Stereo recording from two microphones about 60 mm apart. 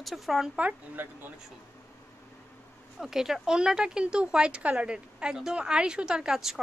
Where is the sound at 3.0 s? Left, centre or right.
Centre.